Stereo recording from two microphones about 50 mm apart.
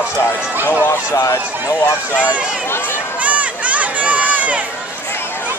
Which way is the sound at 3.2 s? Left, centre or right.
Right.